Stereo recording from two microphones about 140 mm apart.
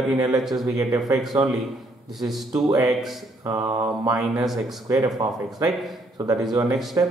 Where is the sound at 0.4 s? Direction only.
Centre (ahead or behind).